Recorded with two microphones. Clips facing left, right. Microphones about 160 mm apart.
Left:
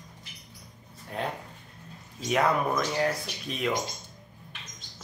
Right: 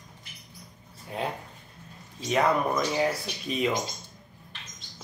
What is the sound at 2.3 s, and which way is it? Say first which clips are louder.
Speech: right 1 dB; centre (ahead or behind).